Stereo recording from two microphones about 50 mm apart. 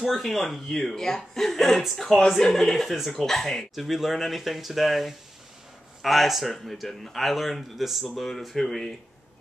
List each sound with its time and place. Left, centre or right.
0.0 s a man's voice: centre